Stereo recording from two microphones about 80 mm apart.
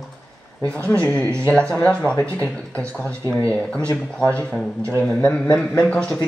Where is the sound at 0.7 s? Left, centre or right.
Centre.